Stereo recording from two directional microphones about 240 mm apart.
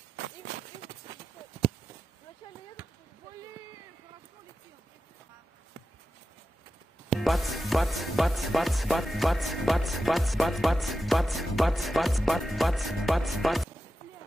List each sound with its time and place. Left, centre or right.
7.1 s speech: centre